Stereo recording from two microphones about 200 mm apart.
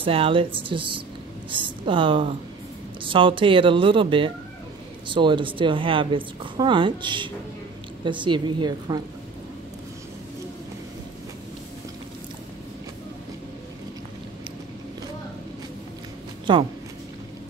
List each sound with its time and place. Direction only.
0.0 s a woman's voice: 25° right (ahead or behind)
16.5 s a woman's voice: 25° right (ahead or behind)